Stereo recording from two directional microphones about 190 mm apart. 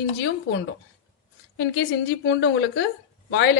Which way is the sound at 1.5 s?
65° left (ahead or behind).